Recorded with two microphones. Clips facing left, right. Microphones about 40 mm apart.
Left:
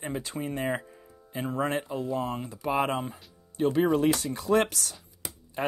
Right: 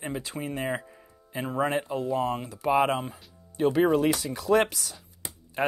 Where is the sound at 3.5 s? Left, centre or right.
Right.